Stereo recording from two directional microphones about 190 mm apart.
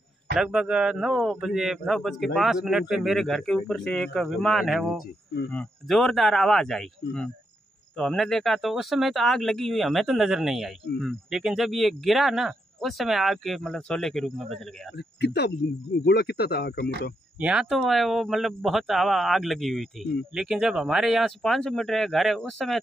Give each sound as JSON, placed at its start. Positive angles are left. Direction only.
{"t": 0.4, "sound": "speech", "side_deg": -5}
{"t": 15.0, "sound": "speech", "side_deg": 65}
{"t": 17.4, "sound": "speech", "side_deg": -5}